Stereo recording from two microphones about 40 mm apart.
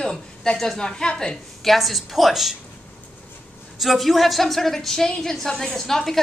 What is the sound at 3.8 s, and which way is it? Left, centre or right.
A woman's voice, centre.